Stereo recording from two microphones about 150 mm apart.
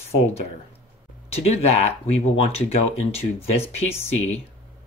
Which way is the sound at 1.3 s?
45° left (ahead or behind).